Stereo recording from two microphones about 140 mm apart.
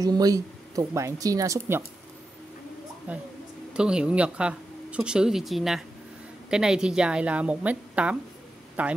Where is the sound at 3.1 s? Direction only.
10° right (ahead or behind).